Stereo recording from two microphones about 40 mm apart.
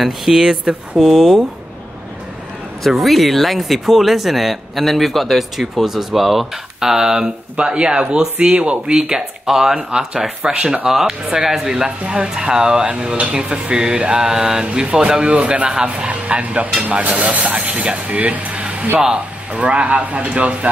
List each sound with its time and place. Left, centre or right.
0.0 s speech: centre
0.4 s speech: centre
0.9 s speech: centre
2.9 s speech: centre
7.5 s speech: right
10.9 s speech: centre; by 20.7 s right